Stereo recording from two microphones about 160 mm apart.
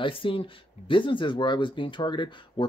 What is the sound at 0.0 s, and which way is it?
Speech, 35° left (ahead or behind).